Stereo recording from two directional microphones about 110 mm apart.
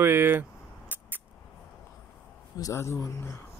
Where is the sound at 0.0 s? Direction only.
20° right (ahead or behind).